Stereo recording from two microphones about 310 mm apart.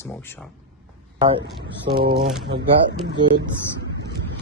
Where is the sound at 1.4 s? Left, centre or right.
Right.